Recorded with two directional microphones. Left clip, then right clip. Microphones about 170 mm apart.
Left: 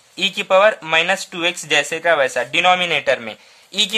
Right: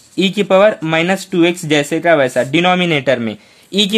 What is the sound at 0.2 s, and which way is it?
Speech, 20° right (ahead or behind).